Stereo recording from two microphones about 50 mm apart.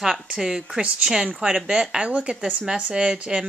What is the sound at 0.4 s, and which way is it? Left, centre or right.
A woman's voice, centre.